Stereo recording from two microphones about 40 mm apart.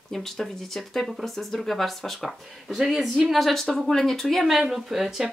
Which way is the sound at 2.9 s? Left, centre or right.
Centre.